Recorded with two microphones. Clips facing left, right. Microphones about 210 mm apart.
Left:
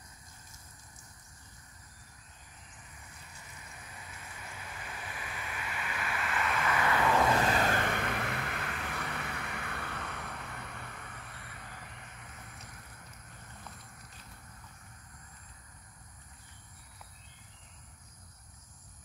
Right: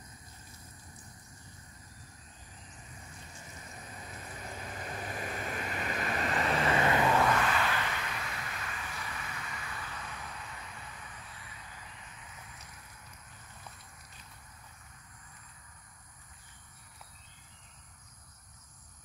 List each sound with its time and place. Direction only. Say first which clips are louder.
4.0 s waves: right 5 dB; 35° right (ahead or behind)
7.2 s vehicle: left 2 dB; 35° left (ahead or behind); by 12.4 s 60° left (ahead or behind)